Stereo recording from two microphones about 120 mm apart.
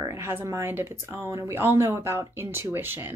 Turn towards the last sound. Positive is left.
turn(degrees=-15)  # may be behind; listen again after turning